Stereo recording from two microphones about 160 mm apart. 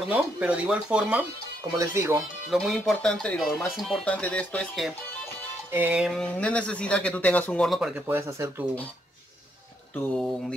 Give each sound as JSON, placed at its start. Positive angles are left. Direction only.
{"t": 0.1, "sound": "speech", "side_deg": -10}
{"t": 1.8, "sound": "speech", "side_deg": -20}
{"t": 2.5, "sound": "speech", "side_deg": 0}
{"t": 5.7, "sound": "speech", "side_deg": -10}
{"t": 6.3, "sound": "speech", "side_deg": 10}
{"t": 8.1, "sound": "speech", "side_deg": -15}